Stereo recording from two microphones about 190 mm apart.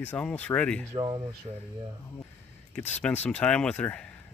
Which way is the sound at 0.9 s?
25° right (ahead or behind).